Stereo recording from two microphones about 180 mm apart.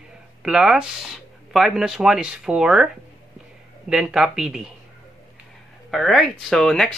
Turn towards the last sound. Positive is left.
turn(degrees=5)  # may be behind; listen again after turning